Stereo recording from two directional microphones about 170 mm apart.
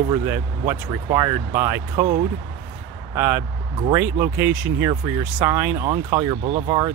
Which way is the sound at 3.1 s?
15° right (ahead or behind).